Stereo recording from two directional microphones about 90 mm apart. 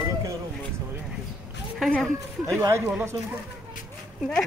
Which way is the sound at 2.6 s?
30° right (ahead or behind).